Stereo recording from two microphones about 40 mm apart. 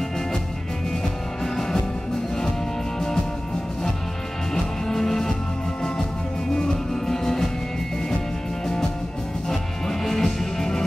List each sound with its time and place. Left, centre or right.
1.4 s music: centre
4.8 s music: centre
6.5 s music: centre
9.5 s music: centre